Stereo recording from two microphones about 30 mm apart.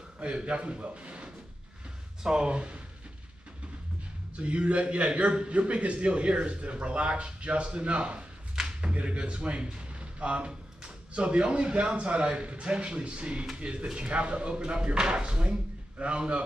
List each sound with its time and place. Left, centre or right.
0.2 s speech: right
4.4 s a man's voice: right
13.8 s speech: right
14.1 s speech: right